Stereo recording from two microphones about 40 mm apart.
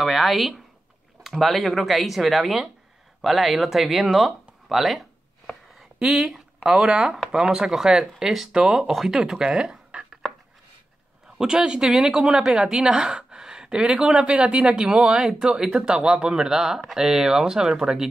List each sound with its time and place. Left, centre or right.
0.0 s speech: centre
8.5 s speech: centre
11.3 s a woman's voice: centre